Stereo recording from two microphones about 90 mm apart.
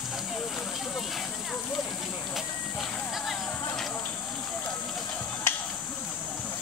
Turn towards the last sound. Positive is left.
turn(degrees=25)  # may be behind; listen again after turning